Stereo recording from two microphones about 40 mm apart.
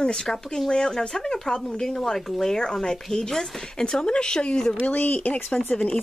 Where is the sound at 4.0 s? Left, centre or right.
Left.